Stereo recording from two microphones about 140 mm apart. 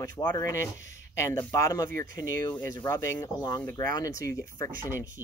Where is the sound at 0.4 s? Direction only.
20° left (ahead or behind).